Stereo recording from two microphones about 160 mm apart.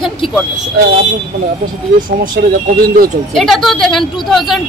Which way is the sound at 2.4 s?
70° right (ahead or behind).